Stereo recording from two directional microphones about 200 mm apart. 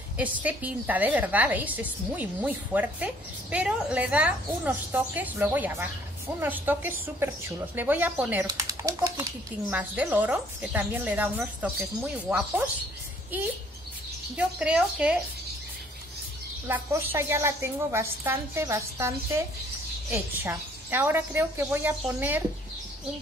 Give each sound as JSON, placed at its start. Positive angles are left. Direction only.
{"t": 0.2, "sound": "a woman's voice", "side_deg": -5}
{"t": 14.3, "sound": "a woman's voice", "side_deg": -5}
{"t": 16.6, "sound": "a woman's voice", "side_deg": -10}